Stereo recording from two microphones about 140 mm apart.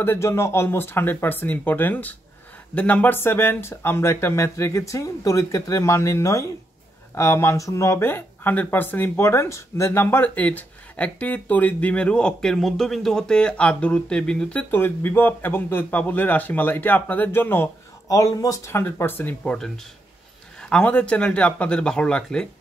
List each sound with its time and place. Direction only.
0.0 s speech: 20° left (ahead or behind)
20.7 s speech: 10° left (ahead or behind)